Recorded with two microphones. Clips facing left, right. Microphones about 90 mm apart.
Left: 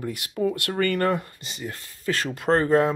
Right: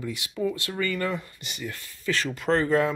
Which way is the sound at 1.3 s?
35° left (ahead or behind).